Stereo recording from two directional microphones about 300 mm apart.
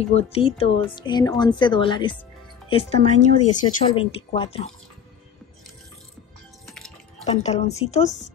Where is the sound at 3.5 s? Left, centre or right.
Centre.